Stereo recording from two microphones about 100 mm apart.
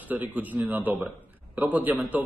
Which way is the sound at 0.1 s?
15° right (ahead or behind).